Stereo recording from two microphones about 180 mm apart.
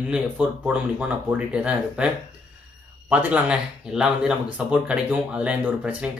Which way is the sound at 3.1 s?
5° right (ahead or behind).